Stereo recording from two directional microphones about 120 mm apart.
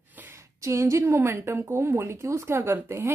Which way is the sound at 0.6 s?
25° right (ahead or behind).